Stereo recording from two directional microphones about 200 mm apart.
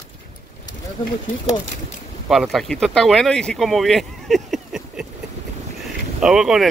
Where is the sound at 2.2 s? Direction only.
Centre (ahead or behind).